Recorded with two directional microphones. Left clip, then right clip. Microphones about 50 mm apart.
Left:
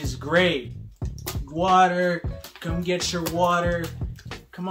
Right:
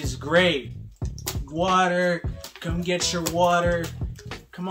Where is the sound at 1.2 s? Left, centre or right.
Right.